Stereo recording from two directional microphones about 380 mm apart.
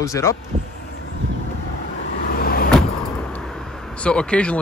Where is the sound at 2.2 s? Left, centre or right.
Left.